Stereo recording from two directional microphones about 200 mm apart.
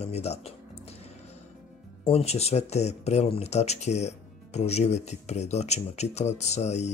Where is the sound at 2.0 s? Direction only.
30° left (ahead or behind).